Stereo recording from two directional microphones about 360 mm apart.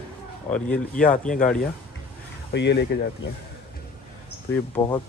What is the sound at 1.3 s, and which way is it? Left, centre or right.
Speech, left.